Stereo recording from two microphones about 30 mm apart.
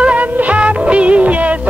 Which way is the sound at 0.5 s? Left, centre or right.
Right.